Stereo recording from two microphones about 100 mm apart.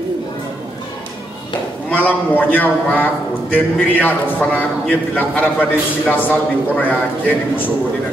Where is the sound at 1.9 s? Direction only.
15° left (ahead or behind).